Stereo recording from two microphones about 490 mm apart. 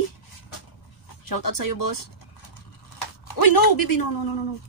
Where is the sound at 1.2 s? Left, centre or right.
Left.